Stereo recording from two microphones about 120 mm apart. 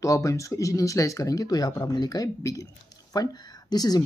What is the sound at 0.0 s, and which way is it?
Speech, 25° left (ahead or behind).